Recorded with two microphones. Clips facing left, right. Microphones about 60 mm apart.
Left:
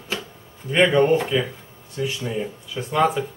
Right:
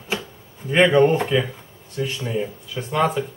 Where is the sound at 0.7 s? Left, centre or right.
Centre.